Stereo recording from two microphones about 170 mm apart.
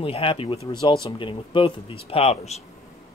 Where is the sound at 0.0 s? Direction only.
30° left (ahead or behind).